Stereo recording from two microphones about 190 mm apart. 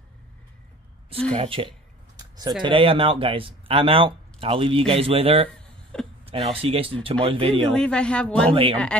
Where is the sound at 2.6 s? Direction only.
30° right (ahead or behind).